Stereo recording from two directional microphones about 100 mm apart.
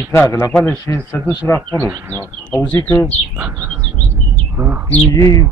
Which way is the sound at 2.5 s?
30° left (ahead or behind).